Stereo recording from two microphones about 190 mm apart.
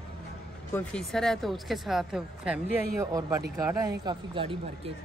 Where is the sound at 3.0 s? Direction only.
20° right (ahead or behind).